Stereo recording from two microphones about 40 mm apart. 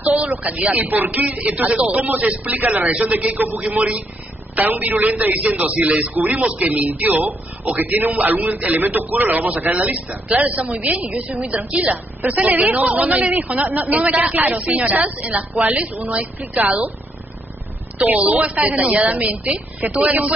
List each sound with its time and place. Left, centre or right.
0.0 s a sound: right
0.3 s speech: right
1.2 s a man's voice: right
2.0 s a man's voice: right
6.1 s a man's voice: right
17.9 s a woman's voice: right
18.2 s a man's voice: right